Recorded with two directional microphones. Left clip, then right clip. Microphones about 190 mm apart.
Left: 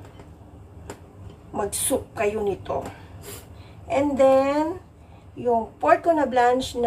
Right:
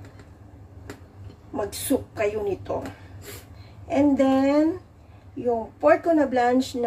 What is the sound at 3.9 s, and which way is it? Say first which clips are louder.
Speech: left 3 dB; 15° right (ahead or behind).